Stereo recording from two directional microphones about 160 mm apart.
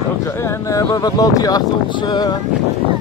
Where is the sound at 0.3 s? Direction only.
15° left (ahead or behind).